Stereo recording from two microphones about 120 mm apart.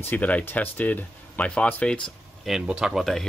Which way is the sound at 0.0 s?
15° left (ahead or behind).